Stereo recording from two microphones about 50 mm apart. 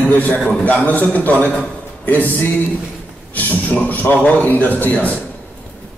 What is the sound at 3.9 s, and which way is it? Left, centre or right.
A man's voice, left.